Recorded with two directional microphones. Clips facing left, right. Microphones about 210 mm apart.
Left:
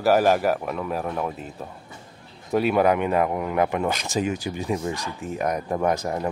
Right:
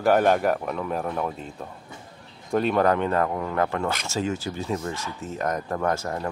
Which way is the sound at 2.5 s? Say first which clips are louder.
Left 1 dB; 10° left (ahead or behind).